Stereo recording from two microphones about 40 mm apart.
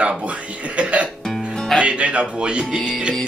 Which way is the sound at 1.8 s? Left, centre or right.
Right.